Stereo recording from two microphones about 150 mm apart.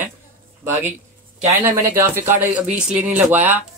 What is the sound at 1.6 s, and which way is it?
Speech, 15° right (ahead or behind).